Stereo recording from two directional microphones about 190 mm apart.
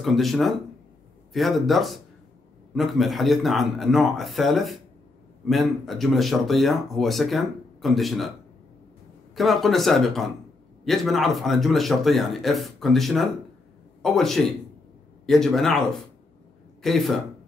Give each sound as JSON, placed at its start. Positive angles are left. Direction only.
{"t": 0.0, "sound": "speech", "side_deg": 0}
{"t": 9.3, "sound": "speech", "side_deg": 0}